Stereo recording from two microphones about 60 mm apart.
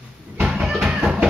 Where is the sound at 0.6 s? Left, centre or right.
Centre.